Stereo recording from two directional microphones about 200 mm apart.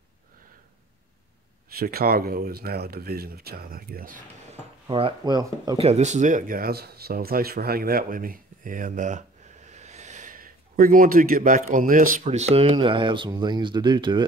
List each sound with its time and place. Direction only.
1.7 s speech: 50° right (ahead or behind)
4.8 s speech: 25° right (ahead or behind)
5.8 s speech: 30° right (ahead or behind)